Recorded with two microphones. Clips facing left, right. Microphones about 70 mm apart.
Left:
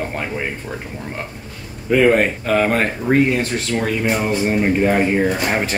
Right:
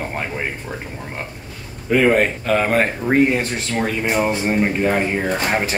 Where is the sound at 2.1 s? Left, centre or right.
Centre.